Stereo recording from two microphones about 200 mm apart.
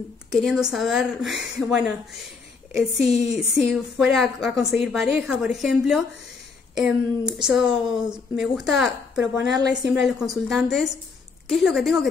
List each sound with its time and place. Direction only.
0.3 s a woman's voice: centre (ahead or behind)
9.6 s a woman's voice: 20° right (ahead or behind)
9.8 s a woman's voice: centre (ahead or behind)